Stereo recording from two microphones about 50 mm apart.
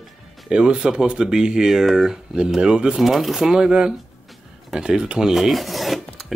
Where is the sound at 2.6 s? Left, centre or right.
Centre.